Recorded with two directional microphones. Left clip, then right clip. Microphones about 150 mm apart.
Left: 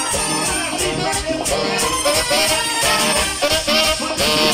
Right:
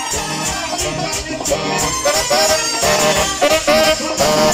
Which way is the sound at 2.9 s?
10° left (ahead or behind).